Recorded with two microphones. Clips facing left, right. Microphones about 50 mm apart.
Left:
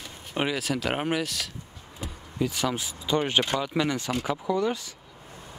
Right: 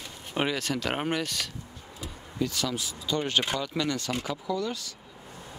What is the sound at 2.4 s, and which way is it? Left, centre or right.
Speech, centre.